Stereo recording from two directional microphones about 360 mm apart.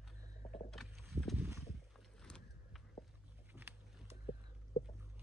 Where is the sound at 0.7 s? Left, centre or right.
Centre.